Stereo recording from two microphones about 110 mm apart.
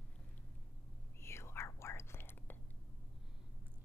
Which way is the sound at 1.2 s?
25° left (ahead or behind).